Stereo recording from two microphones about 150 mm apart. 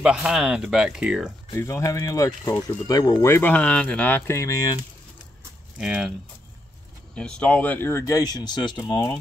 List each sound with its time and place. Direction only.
0.0 s speech: 5° right (ahead or behind)
1.5 s speech: 20° left (ahead or behind)
5.8 s speech: 5° right (ahead or behind)
7.2 s speech: 5° left (ahead or behind); by 9.1 s 30° left (ahead or behind)